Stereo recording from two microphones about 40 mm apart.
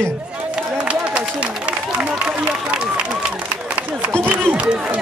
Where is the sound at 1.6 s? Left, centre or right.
Right.